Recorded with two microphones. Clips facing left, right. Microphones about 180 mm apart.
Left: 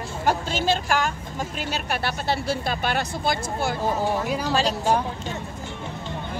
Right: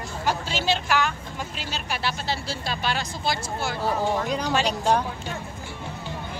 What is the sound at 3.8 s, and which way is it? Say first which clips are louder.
Speech: right 1 dB; 10° left (ahead or behind).